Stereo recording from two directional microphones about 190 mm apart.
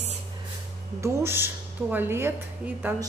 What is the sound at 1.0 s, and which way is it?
A woman's voice, 15° right (ahead or behind).